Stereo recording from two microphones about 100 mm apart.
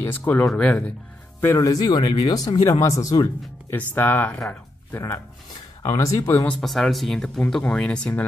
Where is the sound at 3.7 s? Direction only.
20° left (ahead or behind).